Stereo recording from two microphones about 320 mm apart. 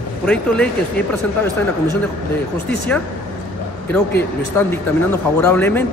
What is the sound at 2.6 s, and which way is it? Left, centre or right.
A man's voice, centre.